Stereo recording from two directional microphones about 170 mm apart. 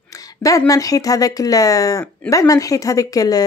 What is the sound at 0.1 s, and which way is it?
Speech, 20° left (ahead or behind).